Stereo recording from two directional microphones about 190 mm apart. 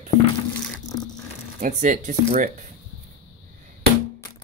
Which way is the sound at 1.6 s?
40° right (ahead or behind).